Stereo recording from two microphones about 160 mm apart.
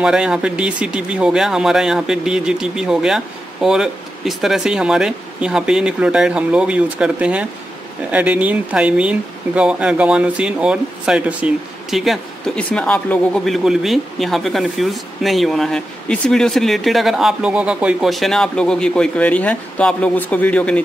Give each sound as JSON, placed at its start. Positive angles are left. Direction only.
{"t": 0.0, "sound": "speech", "side_deg": -5}